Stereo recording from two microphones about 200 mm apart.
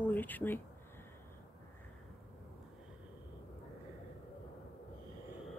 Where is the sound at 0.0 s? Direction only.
10° left (ahead or behind).